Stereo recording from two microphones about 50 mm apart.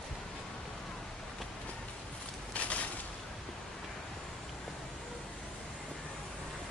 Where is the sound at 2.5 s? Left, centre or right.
Left.